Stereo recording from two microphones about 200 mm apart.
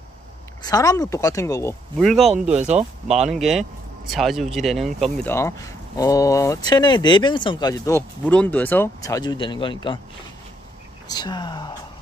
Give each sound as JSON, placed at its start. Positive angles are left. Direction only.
{"t": 0.6, "sound": "speech", "side_deg": 20}
{"t": 2.0, "sound": "speech", "side_deg": 0}
{"t": 2.5, "sound": "speech", "side_deg": -35}
{"t": 3.3, "sound": "speech", "side_deg": 0}
{"t": 11.1, "sound": "speech", "side_deg": 20}